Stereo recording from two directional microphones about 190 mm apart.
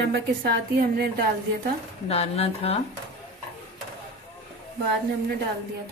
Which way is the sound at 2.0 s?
35° left (ahead or behind).